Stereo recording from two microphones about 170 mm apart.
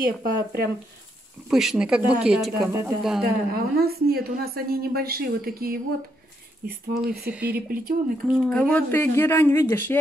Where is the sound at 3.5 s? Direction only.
65° right (ahead or behind).